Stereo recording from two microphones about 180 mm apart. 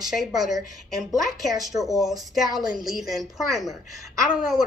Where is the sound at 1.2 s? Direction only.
20° right (ahead or behind).